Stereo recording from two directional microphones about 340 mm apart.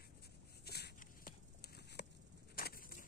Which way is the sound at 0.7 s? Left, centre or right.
Left.